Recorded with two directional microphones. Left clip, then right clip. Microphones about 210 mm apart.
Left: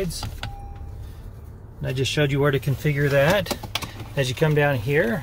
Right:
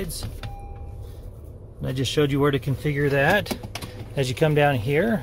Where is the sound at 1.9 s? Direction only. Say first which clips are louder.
Even; 25° right (ahead or behind).